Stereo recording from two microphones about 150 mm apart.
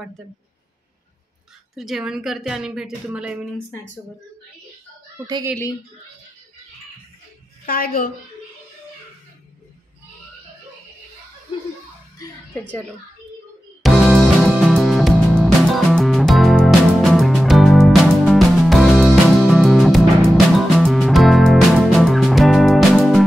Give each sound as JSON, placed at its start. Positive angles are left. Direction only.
{"t": 1.8, "sound": "a woman's voice", "side_deg": -5}
{"t": 5.2, "sound": "speech", "side_deg": -25}
{"t": 7.6, "sound": "a woman's voice", "side_deg": 75}
{"t": 12.2, "sound": "music", "side_deg": 25}
{"t": 13.8, "sound": "music", "side_deg": 0}